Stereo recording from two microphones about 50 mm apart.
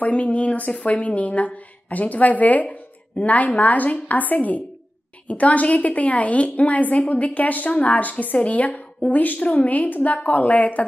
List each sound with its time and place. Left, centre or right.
0.0 s a woman's voice: left